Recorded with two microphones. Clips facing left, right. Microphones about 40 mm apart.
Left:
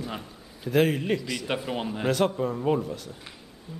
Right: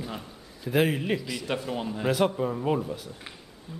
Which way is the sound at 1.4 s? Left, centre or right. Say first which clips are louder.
Right 1 dB; centre.